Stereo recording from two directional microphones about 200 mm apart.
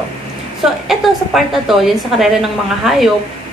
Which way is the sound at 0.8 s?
Centre (ahead or behind).